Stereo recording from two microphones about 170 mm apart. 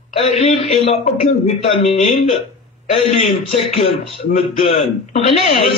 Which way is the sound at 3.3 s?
35° left (ahead or behind).